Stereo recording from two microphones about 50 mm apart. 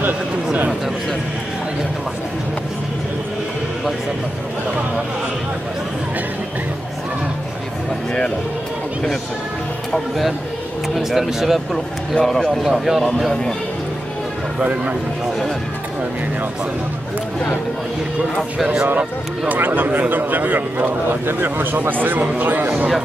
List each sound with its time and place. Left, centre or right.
9.9 s a man's voice: centre
13.3 s a man's voice: centre
18.6 s speech: centre
19.4 s speech: right